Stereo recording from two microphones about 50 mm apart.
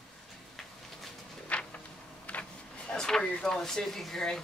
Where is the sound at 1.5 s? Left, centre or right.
Left.